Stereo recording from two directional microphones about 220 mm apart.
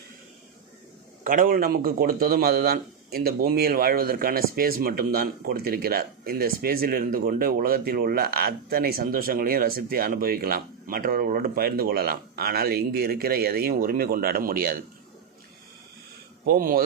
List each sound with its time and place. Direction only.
1.2 s a man's voice: 40° right (ahead or behind)
16.4 s a man's voice: 40° right (ahead or behind)